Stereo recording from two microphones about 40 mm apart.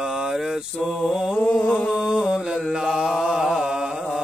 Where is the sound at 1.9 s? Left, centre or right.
Right.